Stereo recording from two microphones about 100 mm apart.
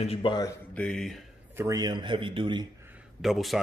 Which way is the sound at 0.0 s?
90° left.